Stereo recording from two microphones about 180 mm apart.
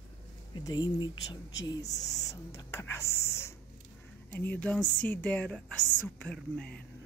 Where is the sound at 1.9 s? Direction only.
70° left (ahead or behind).